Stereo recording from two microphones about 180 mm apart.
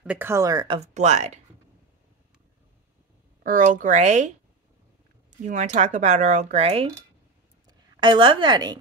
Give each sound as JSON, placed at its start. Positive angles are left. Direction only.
{"t": 0.0, "sound": "speech", "side_deg": -10}
{"t": 0.7, "sound": "speech", "side_deg": -40}
{"t": 3.4, "sound": "speech", "side_deg": -45}
{"t": 5.4, "sound": "a woman's voice", "side_deg": -40}